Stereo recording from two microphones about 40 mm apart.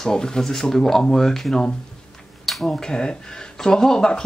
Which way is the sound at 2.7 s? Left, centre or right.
Centre.